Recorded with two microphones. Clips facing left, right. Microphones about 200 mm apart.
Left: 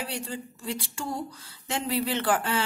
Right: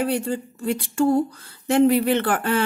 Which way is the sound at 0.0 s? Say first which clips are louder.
Right 11 dB; 55° right (ahead or behind).